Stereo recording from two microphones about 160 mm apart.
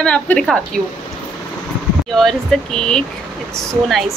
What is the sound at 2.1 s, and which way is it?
A woman's voice, 5° left (ahead or behind).